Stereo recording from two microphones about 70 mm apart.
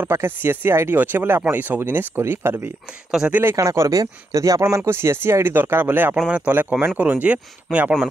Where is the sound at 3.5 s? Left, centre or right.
Right; by 8.0 s centre.